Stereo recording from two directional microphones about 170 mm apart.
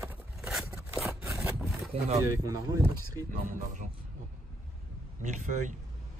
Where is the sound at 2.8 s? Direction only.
50° right (ahead or behind).